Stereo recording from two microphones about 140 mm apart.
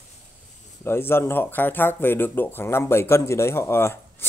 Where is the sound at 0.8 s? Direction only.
15° left (ahead or behind).